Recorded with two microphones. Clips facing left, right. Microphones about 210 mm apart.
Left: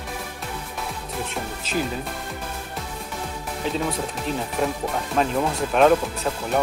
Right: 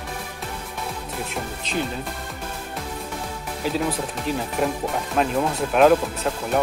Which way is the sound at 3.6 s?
Centre (ahead or behind).